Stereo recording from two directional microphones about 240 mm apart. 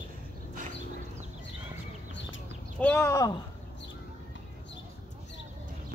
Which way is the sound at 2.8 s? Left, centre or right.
Centre.